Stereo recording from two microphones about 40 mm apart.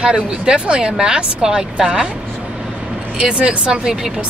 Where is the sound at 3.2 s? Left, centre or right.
Right.